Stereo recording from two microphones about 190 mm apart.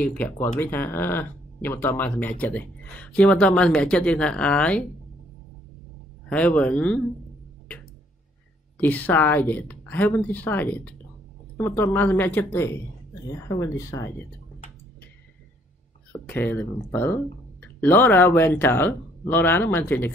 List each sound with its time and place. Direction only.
0.0 s speech: 5° left (ahead or behind)
6.2 s speech: 5° left (ahead or behind)
8.7 s speech: 10° left (ahead or behind)
16.1 s speech: 10° left (ahead or behind)